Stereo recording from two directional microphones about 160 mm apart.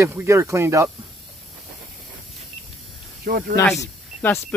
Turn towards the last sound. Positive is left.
turn(degrees=15)  # may be behind; listen again after turning